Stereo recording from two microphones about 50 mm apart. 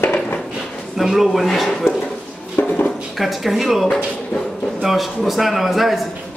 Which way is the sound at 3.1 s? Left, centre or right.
Centre.